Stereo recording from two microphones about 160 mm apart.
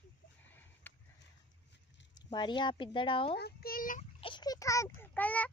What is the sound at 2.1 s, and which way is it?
Speech, 25° left (ahead or behind).